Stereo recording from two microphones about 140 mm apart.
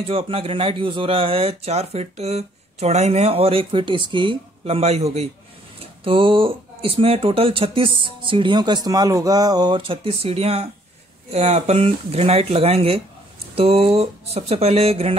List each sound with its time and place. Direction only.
0.0 s speech: 45° right (ahead or behind)